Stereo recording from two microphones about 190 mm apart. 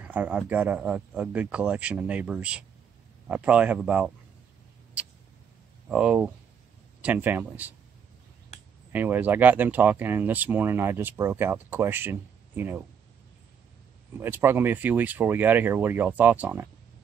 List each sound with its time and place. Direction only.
0.0 s speech: 10° right (ahead or behind)
5.9 s speech: 5° right (ahead or behind)
8.5 s a sound: 35° left (ahead or behind)
8.9 s speech: 10° right (ahead or behind)
14.2 s speech: 10° right (ahead or behind)